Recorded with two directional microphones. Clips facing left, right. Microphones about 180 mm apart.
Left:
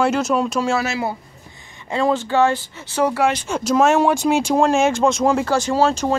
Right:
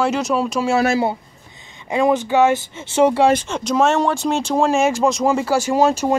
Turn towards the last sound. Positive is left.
turn(degrees=-10)  # may be behind; listen again after turning